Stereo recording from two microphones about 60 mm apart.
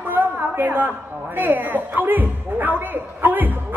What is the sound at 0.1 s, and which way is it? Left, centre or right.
A woman's voice, right.